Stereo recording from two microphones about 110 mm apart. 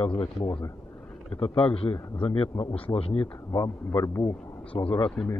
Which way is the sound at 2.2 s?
55° left (ahead or behind).